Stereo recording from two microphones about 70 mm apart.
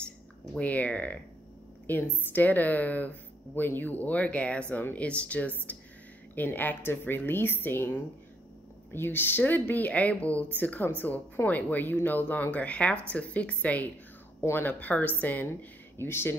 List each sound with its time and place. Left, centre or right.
0.6 s a woman's voice: centre
14.4 s a woman's voice: left